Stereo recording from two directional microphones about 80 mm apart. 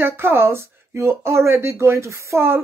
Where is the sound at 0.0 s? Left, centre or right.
Right.